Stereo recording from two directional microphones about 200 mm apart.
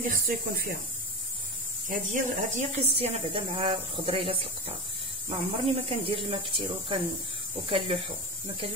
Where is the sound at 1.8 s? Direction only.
35° right (ahead or behind).